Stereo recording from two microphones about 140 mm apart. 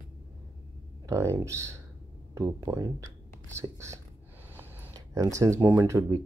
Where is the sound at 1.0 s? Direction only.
20° right (ahead or behind).